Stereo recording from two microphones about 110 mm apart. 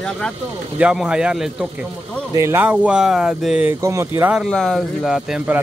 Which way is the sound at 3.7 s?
25° right (ahead or behind).